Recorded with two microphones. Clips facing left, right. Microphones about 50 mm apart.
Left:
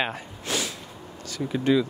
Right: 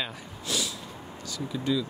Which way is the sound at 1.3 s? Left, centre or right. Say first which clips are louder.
Left 6 dB; left.